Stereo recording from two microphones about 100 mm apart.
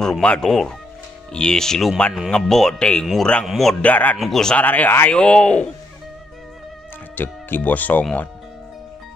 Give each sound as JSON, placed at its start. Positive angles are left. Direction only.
{"t": 0.0, "sound": "speech", "side_deg": 5}
{"t": 3.8, "sound": "speech", "side_deg": 15}
{"t": 4.2, "sound": "speech", "side_deg": 5}
{"t": 4.6, "sound": "speech", "side_deg": 15}
{"t": 7.2, "sound": "speech", "side_deg": 20}